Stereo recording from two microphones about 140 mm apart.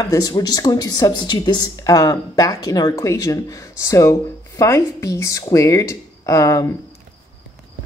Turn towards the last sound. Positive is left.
turn(degrees=20)  # may be behind; listen again after turning